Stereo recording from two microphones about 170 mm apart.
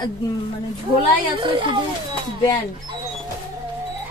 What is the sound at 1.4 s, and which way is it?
Speech, 30° right (ahead or behind).